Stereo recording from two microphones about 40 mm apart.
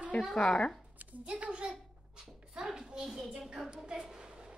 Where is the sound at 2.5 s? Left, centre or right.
Centre.